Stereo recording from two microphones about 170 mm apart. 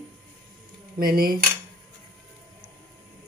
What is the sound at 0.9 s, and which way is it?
Speech, 60° right (ahead or behind).